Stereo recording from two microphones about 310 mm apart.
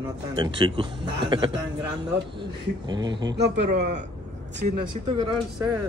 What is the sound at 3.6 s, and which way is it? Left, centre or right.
Speech, right.